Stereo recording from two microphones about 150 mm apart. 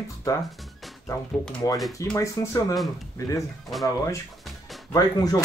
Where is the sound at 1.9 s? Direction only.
20° left (ahead or behind).